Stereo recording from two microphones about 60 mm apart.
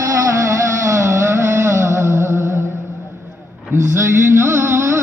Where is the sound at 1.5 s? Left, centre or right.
Right.